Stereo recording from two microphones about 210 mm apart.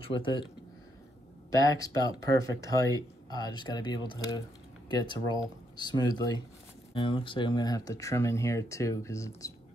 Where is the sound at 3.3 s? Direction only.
20° left (ahead or behind).